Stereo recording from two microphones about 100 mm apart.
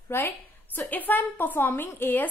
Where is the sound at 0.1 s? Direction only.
25° left (ahead or behind).